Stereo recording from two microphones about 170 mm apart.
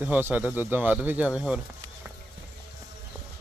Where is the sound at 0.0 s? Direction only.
10° right (ahead or behind).